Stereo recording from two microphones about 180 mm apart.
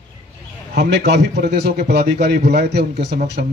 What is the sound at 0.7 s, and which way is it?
A man's voice, 65° right (ahead or behind).